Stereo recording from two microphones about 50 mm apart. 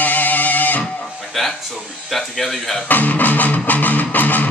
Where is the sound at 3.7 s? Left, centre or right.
Left.